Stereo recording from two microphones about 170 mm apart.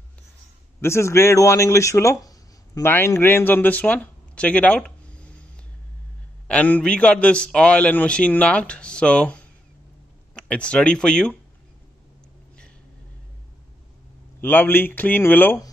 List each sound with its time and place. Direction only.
0.7 s a man's voice: 15° left (ahead or behind)
6.4 s a man's voice: 10° left (ahead or behind)
14.4 s a man's voice: 10° left (ahead or behind)